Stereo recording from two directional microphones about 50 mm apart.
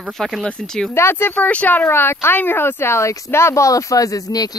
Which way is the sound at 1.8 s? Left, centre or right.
Left.